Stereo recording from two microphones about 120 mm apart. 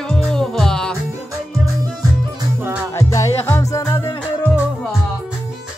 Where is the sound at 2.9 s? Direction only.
25° left (ahead or behind).